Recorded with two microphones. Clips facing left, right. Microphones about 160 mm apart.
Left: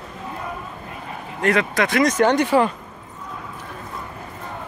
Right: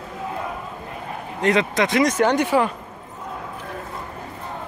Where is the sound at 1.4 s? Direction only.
20° right (ahead or behind).